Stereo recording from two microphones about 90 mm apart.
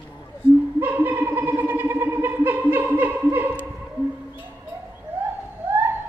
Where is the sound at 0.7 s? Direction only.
25° right (ahead or behind).